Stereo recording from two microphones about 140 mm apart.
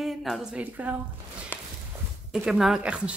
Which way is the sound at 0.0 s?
Centre (ahead or behind).